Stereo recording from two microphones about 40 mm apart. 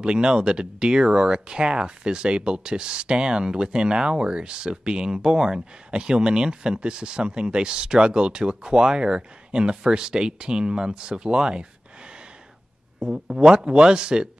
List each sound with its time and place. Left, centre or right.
0.0 s speech: right
13.0 s speech: right